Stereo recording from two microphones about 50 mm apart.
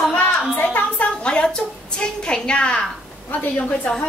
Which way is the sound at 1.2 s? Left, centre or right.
Left.